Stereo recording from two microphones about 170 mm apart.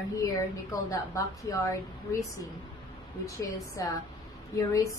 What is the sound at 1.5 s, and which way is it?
Speech, 20° left (ahead or behind).